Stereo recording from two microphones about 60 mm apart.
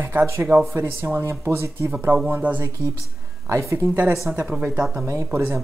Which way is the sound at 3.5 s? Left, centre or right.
Right.